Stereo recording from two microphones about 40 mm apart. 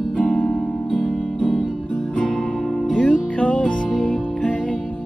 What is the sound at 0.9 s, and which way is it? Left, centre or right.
Music, centre.